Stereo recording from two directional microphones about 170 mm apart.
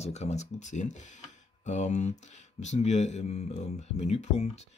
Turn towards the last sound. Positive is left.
turn(degrees=40)  # may be behind; listen again after turning